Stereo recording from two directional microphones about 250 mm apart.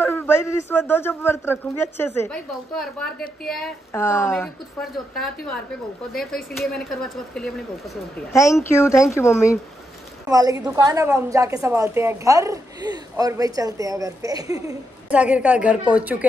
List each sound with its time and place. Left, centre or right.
0.0 s a man's voice: centre
8.3 s a man's voice: centre
10.2 s a woman's voice: centre